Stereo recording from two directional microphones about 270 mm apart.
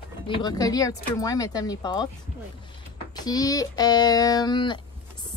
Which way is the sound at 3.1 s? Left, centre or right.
Centre.